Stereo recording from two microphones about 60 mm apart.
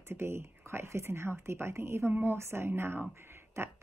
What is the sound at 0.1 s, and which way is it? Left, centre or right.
Speech, right.